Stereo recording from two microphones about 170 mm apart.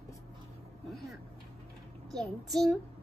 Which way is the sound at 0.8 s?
Centre (ahead or behind).